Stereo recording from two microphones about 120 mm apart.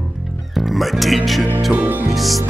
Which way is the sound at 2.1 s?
Centre (ahead or behind).